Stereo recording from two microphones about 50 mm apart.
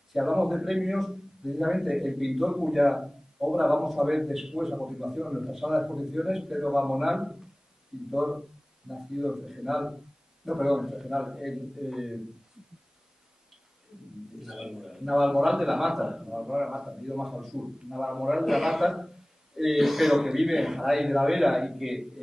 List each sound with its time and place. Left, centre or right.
0.1 s a man's voice: centre
14.4 s a man's voice: centre